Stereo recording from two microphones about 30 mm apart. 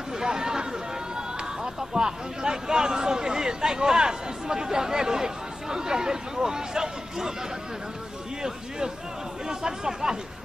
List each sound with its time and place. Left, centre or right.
0.2 s a sound: right
1.1 s speech: right
8.4 s speech: right